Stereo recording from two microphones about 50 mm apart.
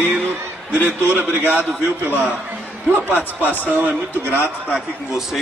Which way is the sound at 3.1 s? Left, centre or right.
Left.